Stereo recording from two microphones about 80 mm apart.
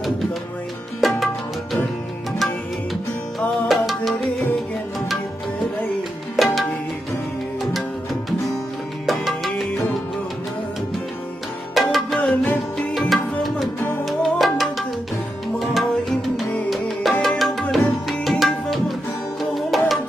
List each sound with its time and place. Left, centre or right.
1.0 s music: centre
6.3 s music: centre
7.7 s music: centre
11.7 s music: centre
12.2 s music: centre
13.1 s music: centre
15.6 s tabla: centre
16.7 s music: centre
18.4 s tabla: centre
19.5 s music: centre